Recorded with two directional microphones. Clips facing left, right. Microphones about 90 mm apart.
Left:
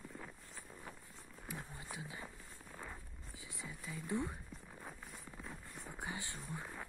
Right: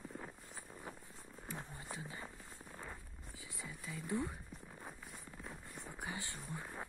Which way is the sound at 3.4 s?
20° left (ahead or behind).